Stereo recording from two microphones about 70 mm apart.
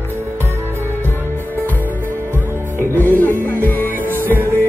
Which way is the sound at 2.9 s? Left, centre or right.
Left.